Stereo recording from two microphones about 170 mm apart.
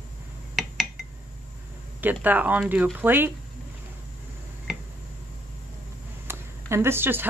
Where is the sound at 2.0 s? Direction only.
10° right (ahead or behind).